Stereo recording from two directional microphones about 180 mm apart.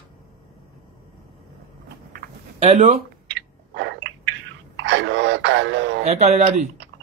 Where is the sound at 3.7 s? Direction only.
80° right.